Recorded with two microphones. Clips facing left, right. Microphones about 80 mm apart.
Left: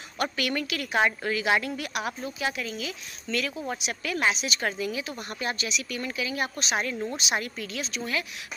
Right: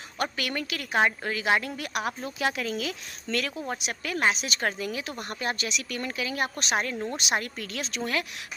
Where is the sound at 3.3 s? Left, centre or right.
Right.